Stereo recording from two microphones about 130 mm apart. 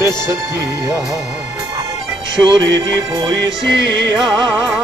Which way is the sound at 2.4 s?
35° right (ahead or behind).